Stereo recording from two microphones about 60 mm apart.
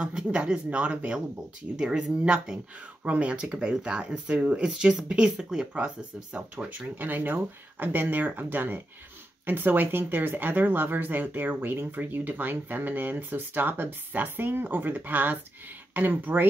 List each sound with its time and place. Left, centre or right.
0.0 s speech: centre